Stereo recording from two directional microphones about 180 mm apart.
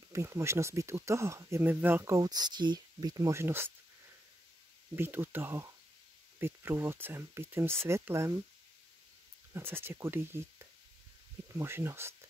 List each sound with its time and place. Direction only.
0.1 s speech: 15° right (ahead or behind)
4.9 s speech: 10° right (ahead or behind)
9.5 s speech: 10° right (ahead or behind)